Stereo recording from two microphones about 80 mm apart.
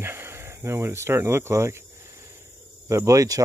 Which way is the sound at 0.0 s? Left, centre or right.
Right.